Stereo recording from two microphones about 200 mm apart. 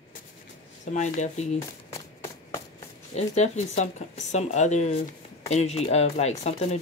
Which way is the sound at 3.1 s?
35° left (ahead or behind).